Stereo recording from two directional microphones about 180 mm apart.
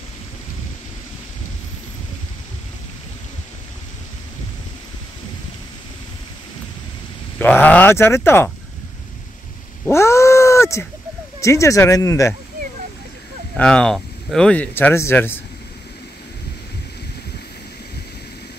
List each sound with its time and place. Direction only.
7.3 s speech: 10° left (ahead or behind)
9.8 s cat: 15° left (ahead or behind)
11.4 s speech: 15° left (ahead or behind)
13.6 s speech: 5° left (ahead or behind)